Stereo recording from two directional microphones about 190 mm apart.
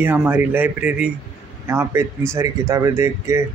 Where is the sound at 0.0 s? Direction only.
10° right (ahead or behind).